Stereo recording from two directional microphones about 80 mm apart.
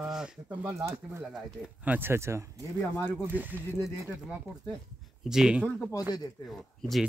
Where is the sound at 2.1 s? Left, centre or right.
Right.